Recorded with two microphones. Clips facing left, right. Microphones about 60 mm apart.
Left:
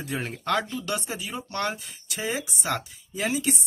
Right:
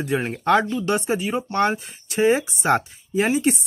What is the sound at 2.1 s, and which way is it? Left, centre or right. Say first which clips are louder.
Speech: right 12 dB; right.